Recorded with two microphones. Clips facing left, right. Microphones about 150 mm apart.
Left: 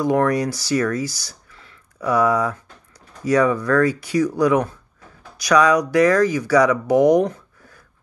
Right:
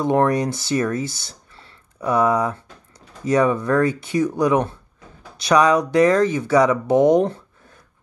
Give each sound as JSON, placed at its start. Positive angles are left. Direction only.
{"t": 0.0, "sound": "speech", "side_deg": -25}